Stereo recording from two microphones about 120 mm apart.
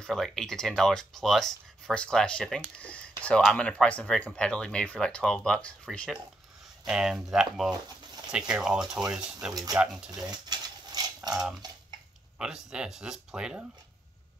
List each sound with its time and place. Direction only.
0.0 s speech: 5° left (ahead or behind)
6.9 s speech: 5° right (ahead or behind)
10.2 s bird: 35° right (ahead or behind)
12.4 s speech: 5° right (ahead or behind)